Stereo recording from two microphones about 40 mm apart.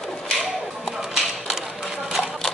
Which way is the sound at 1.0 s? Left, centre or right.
Centre.